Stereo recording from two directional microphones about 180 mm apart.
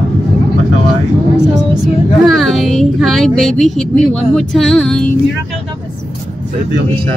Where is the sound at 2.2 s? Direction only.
Centre (ahead or behind).